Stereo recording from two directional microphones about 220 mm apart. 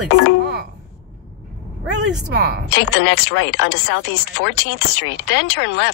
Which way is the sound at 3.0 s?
55° left (ahead or behind).